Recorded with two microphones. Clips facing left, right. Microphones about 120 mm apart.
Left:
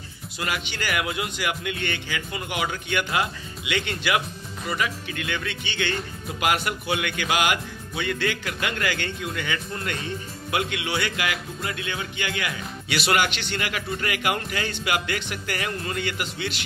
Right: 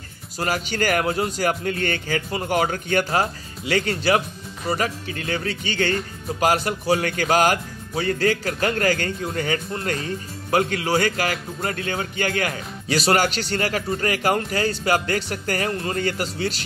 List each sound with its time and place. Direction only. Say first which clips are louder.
0.4 s speech: right 6 dB; 40° right (ahead or behind)